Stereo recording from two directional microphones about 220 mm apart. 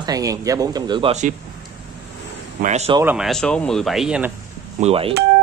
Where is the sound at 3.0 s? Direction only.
5° right (ahead or behind).